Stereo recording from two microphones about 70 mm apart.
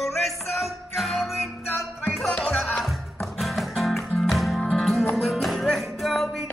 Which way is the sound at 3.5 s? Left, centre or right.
Centre.